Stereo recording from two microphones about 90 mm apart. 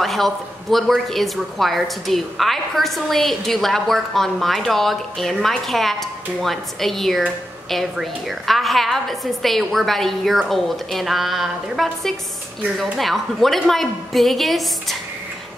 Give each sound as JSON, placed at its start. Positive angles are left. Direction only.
{"t": 0.0, "sound": "a woman's voice", "side_deg": 0}